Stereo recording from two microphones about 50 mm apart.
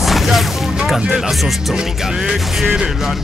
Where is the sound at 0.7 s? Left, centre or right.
Centre.